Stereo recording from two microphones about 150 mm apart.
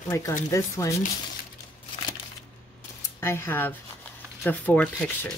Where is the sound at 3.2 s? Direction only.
15° left (ahead or behind).